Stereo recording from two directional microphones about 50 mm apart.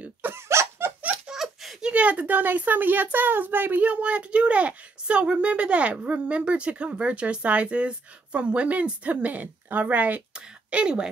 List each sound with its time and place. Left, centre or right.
0.3 s laughter: right
1.2 s a sound: centre
1.8 s a woman's voice: right
3.8 s speech: right
10.3 s speech: centre